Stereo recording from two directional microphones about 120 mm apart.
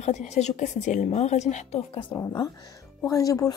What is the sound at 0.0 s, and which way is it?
A woman's voice, 75° left (ahead or behind).